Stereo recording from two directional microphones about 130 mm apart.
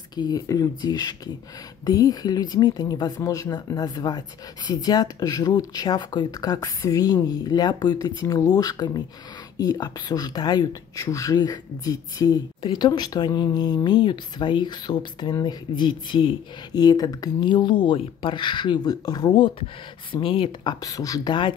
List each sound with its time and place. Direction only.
0.1 s speech: 30° left (ahead or behind)
20.8 s speech: 25° left (ahead or behind)